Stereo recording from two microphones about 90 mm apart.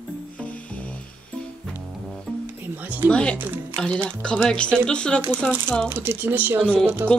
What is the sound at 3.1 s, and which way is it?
Speech, 10° left (ahead or behind).